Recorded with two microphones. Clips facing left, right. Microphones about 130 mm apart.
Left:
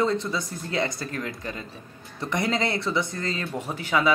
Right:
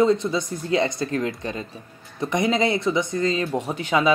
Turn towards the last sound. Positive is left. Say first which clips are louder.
# right 3 dB
turn(degrees=-20)  # may be behind; listen again after turning